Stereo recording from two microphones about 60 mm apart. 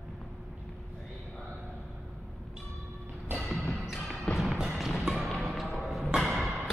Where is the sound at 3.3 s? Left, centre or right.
Centre.